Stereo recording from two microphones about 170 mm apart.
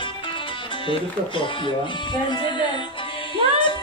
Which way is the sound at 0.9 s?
30° left (ahead or behind).